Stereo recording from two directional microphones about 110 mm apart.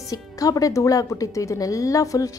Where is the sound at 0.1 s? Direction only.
35° left (ahead or behind).